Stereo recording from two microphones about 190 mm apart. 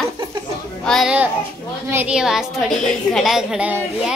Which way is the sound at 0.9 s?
Centre (ahead or behind).